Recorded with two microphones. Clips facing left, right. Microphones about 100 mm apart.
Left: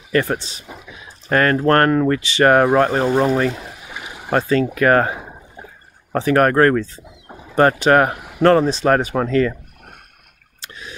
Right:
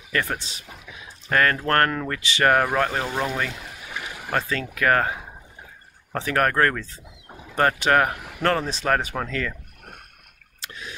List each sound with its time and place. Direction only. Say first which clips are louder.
0.1 s speech: left 8 dB; 35° left (ahead or behind)
3.9 s a sound: right 1 dB; 15° left (ahead or behind)
4.3 s speech: left 9 dB; 35° left (ahead or behind)